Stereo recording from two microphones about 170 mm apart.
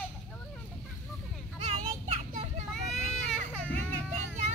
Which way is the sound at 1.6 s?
40° right (ahead or behind).